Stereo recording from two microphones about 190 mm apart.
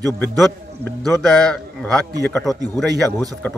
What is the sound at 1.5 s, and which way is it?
Speech, 5° left (ahead or behind).